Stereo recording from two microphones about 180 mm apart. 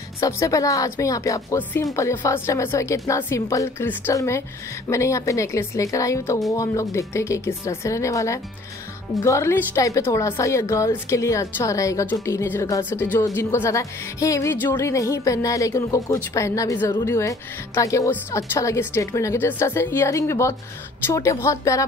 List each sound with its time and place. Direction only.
0.2 s speech: 20° left (ahead or behind)